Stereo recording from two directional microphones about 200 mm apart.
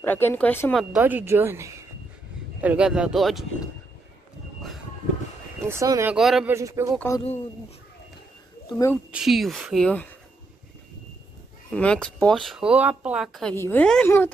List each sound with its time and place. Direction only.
0.0 s speech: 10° left (ahead or behind)
0.9 s speech: 10° right (ahead or behind)
5.7 s speech: 15° right (ahead or behind)
6.1 s speech: centre (ahead or behind)
6.5 s speech: 15° right (ahead or behind)
7.1 s speech: 15° left (ahead or behind)
8.7 s speech: 15° left (ahead or behind)
9.1 s speech: centre (ahead or behind)
11.7 s speech: 5° left (ahead or behind)